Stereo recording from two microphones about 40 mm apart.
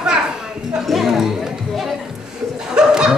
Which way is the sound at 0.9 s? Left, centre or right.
Centre.